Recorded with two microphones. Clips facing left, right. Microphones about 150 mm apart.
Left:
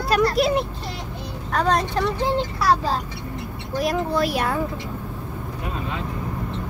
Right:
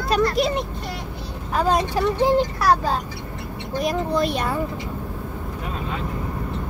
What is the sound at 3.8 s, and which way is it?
Speech, centre (ahead or behind).